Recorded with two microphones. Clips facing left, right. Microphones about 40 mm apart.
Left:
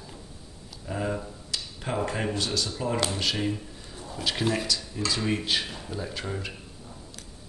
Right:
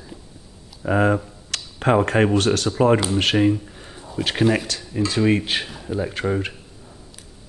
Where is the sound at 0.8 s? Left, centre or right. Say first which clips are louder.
Right 12 dB; right.